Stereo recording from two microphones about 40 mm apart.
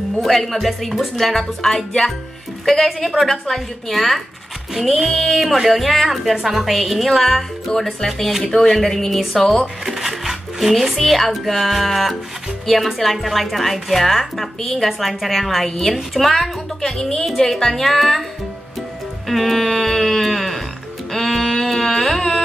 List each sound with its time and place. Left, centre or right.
0.2 s a woman's voice: centre
5.3 s a woman's voice: centre
7.7 s speech: centre
9.8 s music: centre
11.0 s a woman's voice: centre
16.8 s speech: centre
19.2 s a woman's voice: centre
21.3 s a sound: centre
21.5 s carnatic music: centre